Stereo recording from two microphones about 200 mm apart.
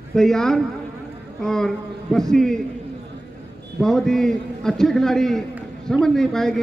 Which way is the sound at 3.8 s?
Centre (ahead or behind).